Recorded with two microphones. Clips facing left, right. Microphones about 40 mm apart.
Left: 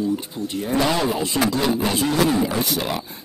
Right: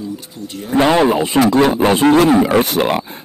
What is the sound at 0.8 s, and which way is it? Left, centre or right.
A man's voice, right.